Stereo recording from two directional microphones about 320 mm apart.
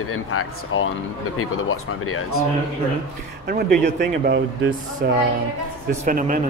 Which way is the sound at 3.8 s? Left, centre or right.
Right.